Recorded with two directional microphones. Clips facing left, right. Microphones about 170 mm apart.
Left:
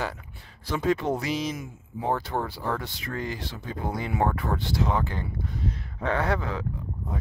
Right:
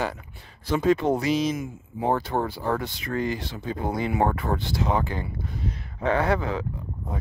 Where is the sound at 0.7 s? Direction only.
20° right (ahead or behind).